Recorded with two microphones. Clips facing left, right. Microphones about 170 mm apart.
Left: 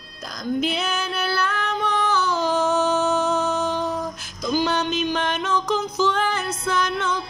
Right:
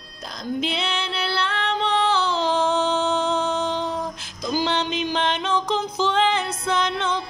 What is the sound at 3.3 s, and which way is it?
Music, 25° right (ahead or behind).